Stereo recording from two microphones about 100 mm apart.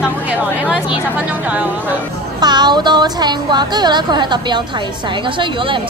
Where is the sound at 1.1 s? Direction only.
10° right (ahead or behind).